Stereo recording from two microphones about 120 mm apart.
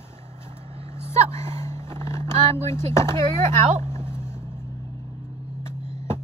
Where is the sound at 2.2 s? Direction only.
70° right (ahead or behind).